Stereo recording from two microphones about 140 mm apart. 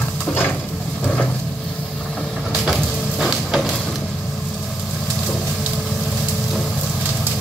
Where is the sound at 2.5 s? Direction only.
Centre (ahead or behind).